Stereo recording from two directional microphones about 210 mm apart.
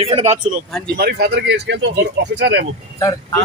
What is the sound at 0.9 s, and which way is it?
Speech, 50° right (ahead or behind).